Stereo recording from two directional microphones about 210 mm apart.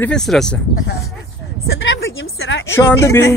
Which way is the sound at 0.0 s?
5° left (ahead or behind).